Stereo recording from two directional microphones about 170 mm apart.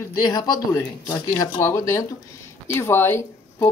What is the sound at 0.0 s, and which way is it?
A woman's voice, 25° left (ahead or behind).